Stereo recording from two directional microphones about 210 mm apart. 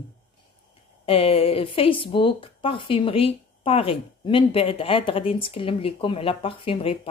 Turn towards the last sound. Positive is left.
turn(degrees=25)  # may be behind; listen again after turning